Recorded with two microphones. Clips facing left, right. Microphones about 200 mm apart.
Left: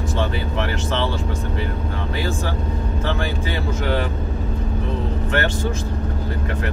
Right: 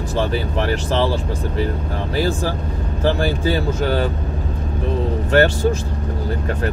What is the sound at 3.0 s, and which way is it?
Speech, 35° right (ahead or behind).